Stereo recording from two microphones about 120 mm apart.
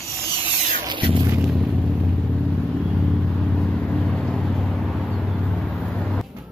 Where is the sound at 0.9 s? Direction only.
45° right (ahead or behind).